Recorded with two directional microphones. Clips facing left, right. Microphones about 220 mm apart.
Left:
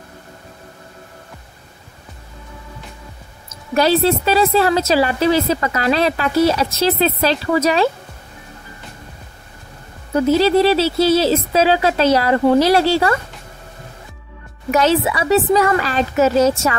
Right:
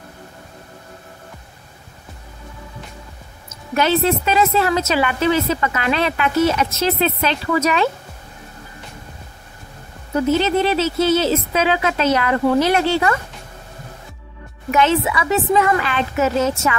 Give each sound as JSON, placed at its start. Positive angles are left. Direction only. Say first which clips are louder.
{"t": 3.7, "sound": "a woman's voice", "louder": "left 2 dB", "side_deg": 35}
{"t": 10.3, "sound": "a woman's voice", "louder": "left 5 dB", "side_deg": 35}
{"t": 14.7, "sound": "a woman's voice", "louder": "left 2 dB", "side_deg": 40}